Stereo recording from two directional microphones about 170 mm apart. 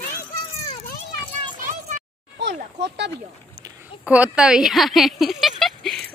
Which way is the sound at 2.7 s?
90° right.